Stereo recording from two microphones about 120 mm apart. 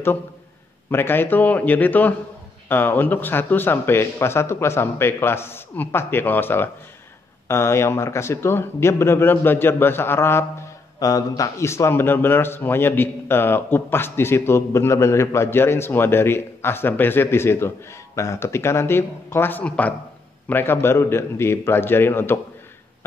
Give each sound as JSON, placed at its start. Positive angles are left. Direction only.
{"t": 0.8, "sound": "a man's voice", "side_deg": 20}